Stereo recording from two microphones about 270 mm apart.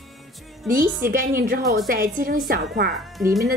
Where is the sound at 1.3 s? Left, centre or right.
Right.